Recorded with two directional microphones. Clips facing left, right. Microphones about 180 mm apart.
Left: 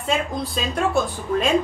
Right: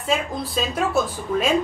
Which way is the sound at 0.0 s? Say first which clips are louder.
Even; centre (ahead or behind).